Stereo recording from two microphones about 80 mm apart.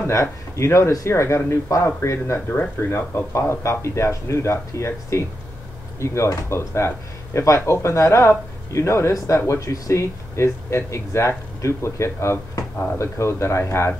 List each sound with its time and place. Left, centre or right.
0.0 s speech: left